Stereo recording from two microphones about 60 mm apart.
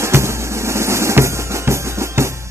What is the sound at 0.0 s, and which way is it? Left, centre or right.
Music, right.